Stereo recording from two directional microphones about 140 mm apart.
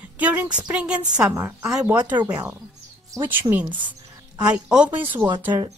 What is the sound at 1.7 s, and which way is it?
Speech, 5° right (ahead or behind).